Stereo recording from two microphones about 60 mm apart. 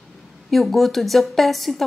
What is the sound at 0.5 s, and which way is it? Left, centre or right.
A woman's voice, centre.